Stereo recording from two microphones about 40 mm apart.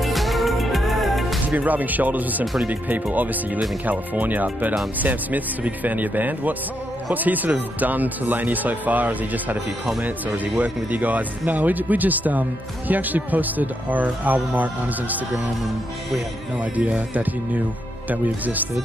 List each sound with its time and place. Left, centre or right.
0.0 s music: centre
1.5 s speech: right
18.1 s speech: right